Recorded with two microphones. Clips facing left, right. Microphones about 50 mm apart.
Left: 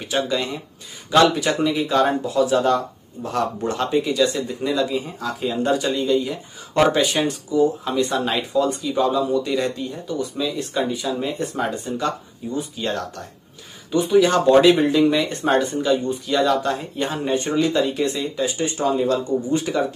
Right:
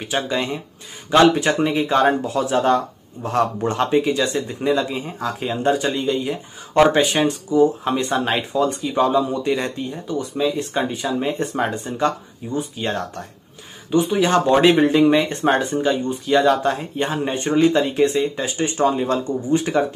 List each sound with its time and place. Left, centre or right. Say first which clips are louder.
0.0 s speech: even; right